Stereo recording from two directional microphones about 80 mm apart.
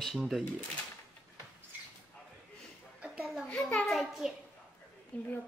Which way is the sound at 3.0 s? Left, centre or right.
Centre.